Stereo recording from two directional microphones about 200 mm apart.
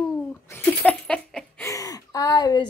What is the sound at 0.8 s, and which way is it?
Giggle, 5° left (ahead or behind).